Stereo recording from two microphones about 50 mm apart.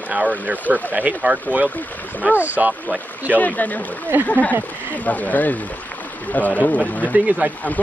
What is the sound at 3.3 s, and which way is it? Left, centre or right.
Speech, left.